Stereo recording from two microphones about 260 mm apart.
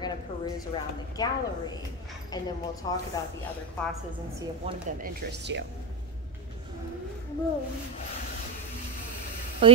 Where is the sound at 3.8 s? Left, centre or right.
Centre.